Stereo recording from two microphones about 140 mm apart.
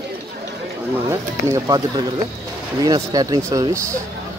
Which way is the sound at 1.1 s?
25° right (ahead or behind).